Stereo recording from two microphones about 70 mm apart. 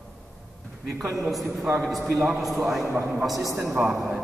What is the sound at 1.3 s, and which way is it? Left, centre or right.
A man's voice, centre.